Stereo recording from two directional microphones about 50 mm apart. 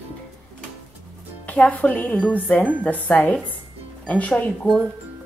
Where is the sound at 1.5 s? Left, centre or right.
Left.